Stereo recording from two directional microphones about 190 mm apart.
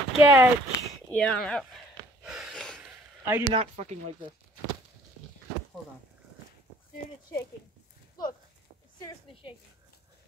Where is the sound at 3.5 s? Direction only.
35° right (ahead or behind).